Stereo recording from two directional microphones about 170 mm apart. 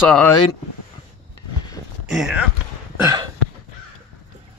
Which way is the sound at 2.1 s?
5° right (ahead or behind).